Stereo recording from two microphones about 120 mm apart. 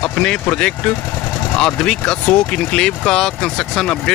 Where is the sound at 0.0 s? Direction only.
10° left (ahead or behind).